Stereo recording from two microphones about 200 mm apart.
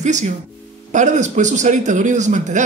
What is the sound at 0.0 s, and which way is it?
Speech, 35° right (ahead or behind).